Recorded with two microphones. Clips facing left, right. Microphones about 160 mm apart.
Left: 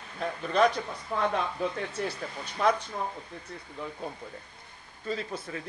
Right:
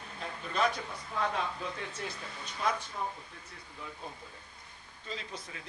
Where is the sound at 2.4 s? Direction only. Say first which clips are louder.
Left 7 dB; 60° left (ahead or behind).